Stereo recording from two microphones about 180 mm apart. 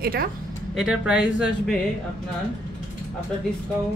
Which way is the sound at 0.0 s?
55° right (ahead or behind).